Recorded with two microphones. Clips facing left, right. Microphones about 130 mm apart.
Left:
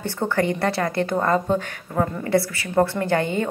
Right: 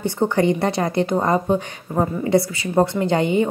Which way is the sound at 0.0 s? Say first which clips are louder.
Right 4 dB; 20° right (ahead or behind).